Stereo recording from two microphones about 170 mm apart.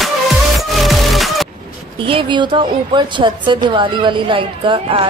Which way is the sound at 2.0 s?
30° right (ahead or behind).